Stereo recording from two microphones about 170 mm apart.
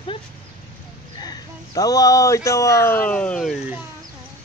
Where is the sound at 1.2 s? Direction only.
20° left (ahead or behind); by 3.6 s 5° left (ahead or behind).